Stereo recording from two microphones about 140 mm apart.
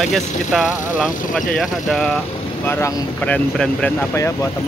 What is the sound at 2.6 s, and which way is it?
Speech, 15° left (ahead or behind).